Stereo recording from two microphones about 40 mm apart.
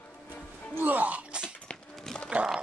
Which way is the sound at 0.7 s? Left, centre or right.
Right.